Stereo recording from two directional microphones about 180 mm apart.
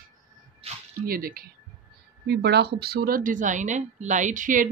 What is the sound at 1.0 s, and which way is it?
Speech, 55° right (ahead or behind).